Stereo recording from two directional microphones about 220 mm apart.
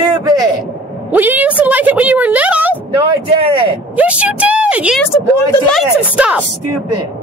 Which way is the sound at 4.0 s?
5° right (ahead or behind).